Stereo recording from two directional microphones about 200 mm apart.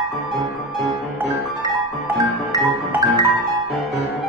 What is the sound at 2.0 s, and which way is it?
Music, 15° right (ahead or behind).